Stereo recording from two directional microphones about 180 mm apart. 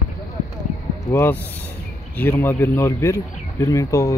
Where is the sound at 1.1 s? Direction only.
15° left (ahead or behind).